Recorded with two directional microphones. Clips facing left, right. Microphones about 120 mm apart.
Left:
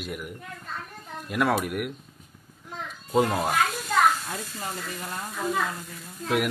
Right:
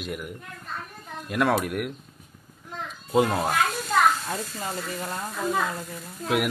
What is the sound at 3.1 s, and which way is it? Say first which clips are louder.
Speech: right 1 dB; 5° right (ahead or behind).